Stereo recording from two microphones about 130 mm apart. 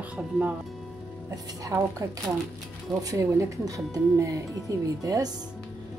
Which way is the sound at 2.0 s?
20° right (ahead or behind).